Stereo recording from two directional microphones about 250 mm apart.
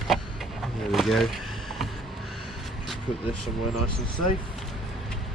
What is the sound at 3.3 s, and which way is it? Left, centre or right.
Speech, left.